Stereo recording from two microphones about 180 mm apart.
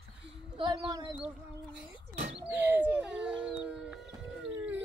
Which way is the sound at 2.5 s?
10° right (ahead or behind).